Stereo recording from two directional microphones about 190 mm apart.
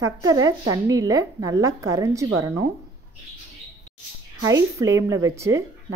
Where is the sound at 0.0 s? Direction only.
20° right (ahead or behind).